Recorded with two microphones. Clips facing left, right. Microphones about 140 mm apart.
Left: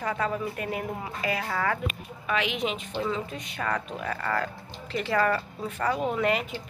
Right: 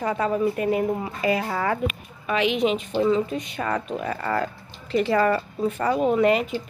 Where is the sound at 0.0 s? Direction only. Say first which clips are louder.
Right 6 dB; 20° right (ahead or behind).